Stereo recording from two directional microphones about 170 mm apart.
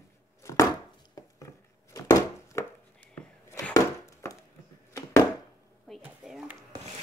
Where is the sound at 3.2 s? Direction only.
5° left (ahead or behind).